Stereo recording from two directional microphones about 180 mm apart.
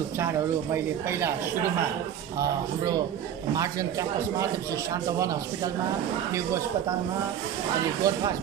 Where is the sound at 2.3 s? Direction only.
20° right (ahead or behind).